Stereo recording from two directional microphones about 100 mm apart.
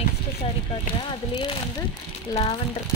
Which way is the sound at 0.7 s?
55° left (ahead or behind).